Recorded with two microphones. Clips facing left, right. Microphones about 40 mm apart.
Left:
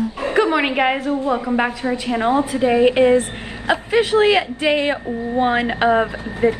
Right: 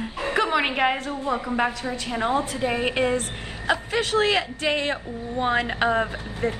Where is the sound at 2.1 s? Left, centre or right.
Left.